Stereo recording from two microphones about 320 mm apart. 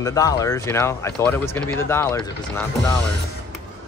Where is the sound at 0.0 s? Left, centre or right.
Centre.